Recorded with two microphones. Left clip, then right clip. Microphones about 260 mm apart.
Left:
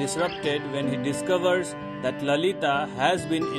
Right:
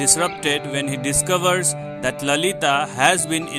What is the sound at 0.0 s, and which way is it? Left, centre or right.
Speech, right.